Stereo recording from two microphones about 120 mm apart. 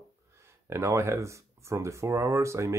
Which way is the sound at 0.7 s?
20° right (ahead or behind).